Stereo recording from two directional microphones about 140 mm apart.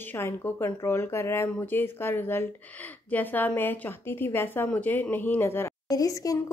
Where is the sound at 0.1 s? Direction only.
15° left (ahead or behind).